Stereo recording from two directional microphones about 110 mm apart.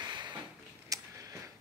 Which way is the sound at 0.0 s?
45° right (ahead or behind).